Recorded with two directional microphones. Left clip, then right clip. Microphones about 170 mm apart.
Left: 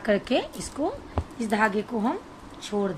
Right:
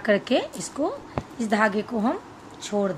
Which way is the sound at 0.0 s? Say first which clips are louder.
Right 2 dB; 5° right (ahead or behind).